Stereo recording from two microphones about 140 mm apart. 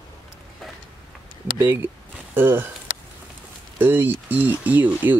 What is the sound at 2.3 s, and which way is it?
Speech, 15° right (ahead or behind).